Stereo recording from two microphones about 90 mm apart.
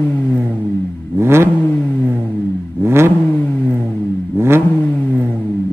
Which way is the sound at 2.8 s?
30° right (ahead or behind).